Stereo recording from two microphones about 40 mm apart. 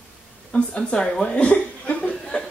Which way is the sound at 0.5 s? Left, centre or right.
Left.